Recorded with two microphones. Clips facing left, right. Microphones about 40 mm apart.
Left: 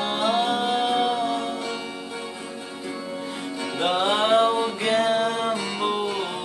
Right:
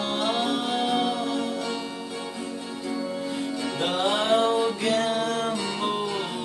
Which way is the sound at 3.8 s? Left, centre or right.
Left.